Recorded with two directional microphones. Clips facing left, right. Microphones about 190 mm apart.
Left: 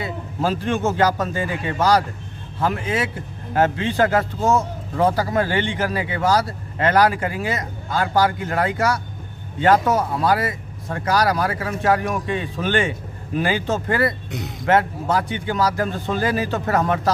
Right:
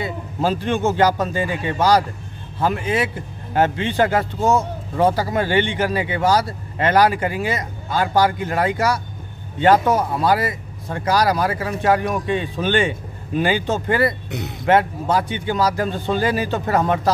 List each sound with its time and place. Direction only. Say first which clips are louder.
0.0 s a man's voice: right 2 dB; 25° right (ahead or behind)
4.2 s speech: right 1 dB; 15° right (ahead or behind)